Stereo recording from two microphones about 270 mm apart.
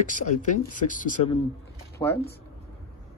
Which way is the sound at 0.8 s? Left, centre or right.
Left.